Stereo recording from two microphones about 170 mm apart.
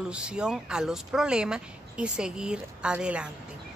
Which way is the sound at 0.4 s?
5° right (ahead or behind).